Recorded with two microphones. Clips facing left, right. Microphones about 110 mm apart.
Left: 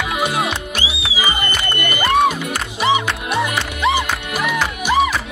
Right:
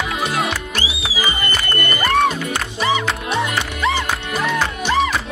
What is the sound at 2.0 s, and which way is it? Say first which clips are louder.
Music: left 2 dB; 5° left (ahead or behind).